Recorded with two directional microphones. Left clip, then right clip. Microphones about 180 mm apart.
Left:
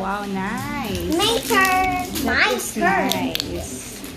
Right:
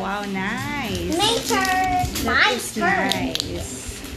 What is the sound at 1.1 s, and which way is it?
Speech, 15° left (ahead or behind).